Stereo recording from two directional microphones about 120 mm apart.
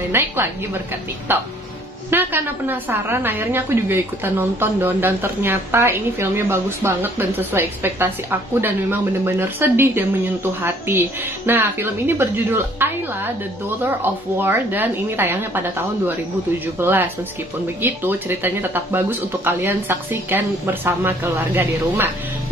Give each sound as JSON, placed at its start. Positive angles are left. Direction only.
{"t": 0.1, "sound": "a woman's voice", "side_deg": -20}
{"t": 16.8, "sound": "speech", "side_deg": -15}